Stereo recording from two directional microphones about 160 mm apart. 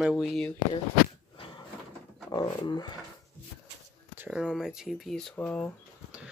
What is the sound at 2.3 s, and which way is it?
Dog, 25° left (ahead or behind).